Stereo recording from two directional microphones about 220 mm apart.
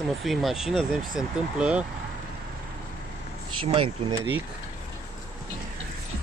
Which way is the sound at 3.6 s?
25° right (ahead or behind).